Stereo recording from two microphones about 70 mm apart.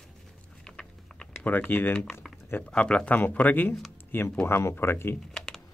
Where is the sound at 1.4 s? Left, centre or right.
Left.